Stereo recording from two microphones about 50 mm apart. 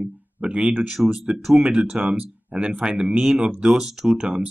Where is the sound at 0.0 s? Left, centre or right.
Right.